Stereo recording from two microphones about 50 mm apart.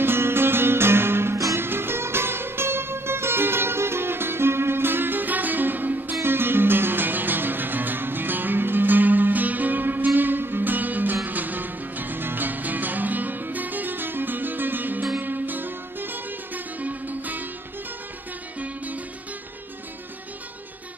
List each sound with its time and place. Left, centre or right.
0.0 s music: right
6.2 s music: right